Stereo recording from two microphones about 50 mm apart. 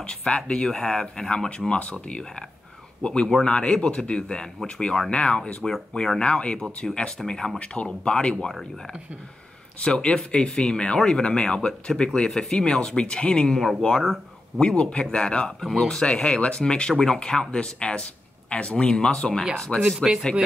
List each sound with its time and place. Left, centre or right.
0.0 s speech: left
5.6 s speech: centre
7.5 s speech: left
9.8 s speech: centre
13.6 s speech: centre
14.8 s speech: centre
19.8 s speech: centre